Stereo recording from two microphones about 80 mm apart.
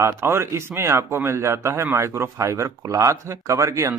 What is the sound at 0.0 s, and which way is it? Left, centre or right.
Speech, right.